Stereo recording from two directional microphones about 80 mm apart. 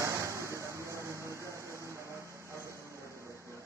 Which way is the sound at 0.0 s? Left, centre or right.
Right.